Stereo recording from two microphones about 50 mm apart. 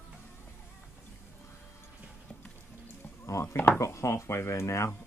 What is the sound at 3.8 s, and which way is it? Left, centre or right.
Speech, left.